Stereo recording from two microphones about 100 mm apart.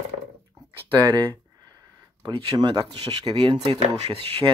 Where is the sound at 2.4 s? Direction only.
55° right (ahead or behind).